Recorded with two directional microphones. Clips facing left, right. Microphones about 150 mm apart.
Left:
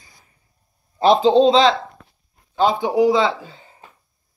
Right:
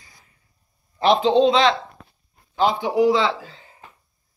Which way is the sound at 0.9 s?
35° left (ahead or behind).